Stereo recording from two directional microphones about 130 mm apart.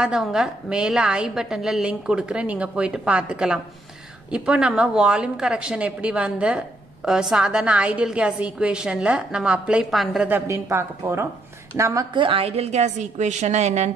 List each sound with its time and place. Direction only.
0.0 s a woman's voice: 5° right (ahead or behind)
10.2 s speech: 15° right (ahead or behind)
12.1 s a woman's voice: 40° right (ahead or behind); by 13.8 s 60° right (ahead or behind)